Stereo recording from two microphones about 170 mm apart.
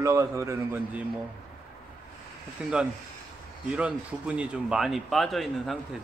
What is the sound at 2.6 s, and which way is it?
Speech, 5° right (ahead or behind).